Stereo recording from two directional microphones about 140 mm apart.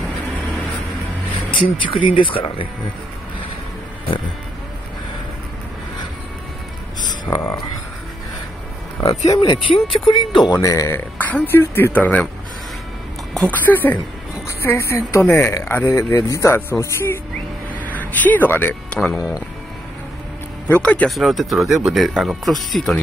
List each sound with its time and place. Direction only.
1.5 s speech: 35° left (ahead or behind)
7.2 s speech: 25° left (ahead or behind)
9.4 s speech: 35° left (ahead or behind); by 12.3 s 10° left (ahead or behind)
13.3 s speech: centre (ahead or behind)
13.6 s speech: 15° left (ahead or behind)
17.8 s music: 10° left (ahead or behind)
20.6 s speech: 10° left (ahead or behind)